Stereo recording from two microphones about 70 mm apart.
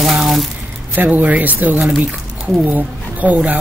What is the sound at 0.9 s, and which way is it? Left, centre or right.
Speech, right.